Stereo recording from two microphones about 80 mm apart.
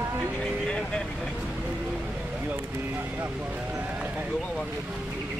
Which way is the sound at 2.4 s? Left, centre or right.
Right.